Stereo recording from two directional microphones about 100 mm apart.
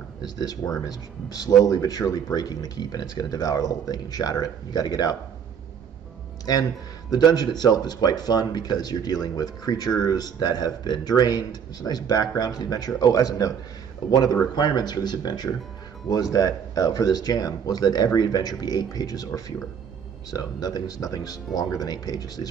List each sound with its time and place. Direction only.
0.2 s speech: 40° left (ahead or behind)
6.5 s speech: 45° left (ahead or behind)